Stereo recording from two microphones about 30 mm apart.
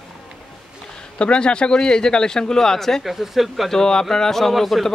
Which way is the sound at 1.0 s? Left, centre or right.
Left.